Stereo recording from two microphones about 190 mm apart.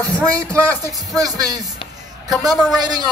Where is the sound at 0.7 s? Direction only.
20° right (ahead or behind).